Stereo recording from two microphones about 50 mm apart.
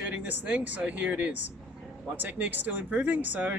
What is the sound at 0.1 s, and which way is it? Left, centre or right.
Speech, right.